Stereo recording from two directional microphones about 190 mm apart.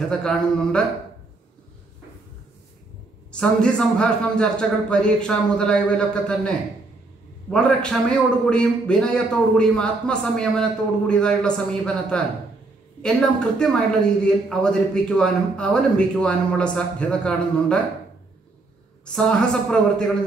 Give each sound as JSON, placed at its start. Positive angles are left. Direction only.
{"t": 0.2, "sound": "a man's voice", "side_deg": 5}
{"t": 3.3, "sound": "a man's voice", "side_deg": 5}
{"t": 19.1, "sound": "a man's voice", "side_deg": 5}